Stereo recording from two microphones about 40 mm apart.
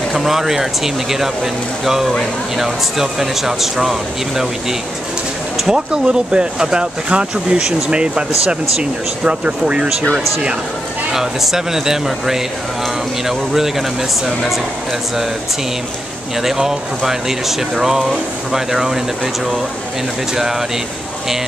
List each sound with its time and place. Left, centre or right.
0.1 s speech: centre
5.7 s speech: right
11.1 s speech: centre
16.3 s speech: centre